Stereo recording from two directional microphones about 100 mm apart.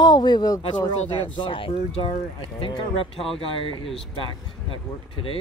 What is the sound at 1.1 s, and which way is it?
Speech, 55° left (ahead or behind).